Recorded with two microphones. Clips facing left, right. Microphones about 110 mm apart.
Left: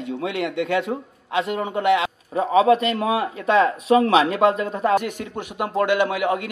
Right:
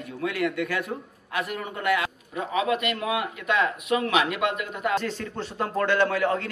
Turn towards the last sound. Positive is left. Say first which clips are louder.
# left 2 dB
turn(degrees=15)  # may be behind; listen again after turning